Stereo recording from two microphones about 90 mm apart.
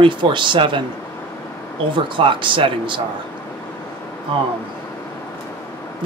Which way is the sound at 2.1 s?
65° right (ahead or behind).